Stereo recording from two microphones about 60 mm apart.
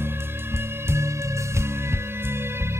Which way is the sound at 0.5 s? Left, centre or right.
Right.